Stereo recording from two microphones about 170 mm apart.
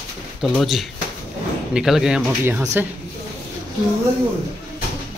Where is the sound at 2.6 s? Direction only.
15° right (ahead or behind).